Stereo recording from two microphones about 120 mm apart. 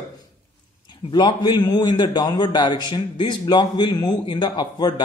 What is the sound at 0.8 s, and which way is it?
A man's voice, 40° left (ahead or behind).